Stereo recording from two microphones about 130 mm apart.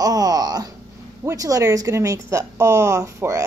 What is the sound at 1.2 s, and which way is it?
Speech, 25° right (ahead or behind).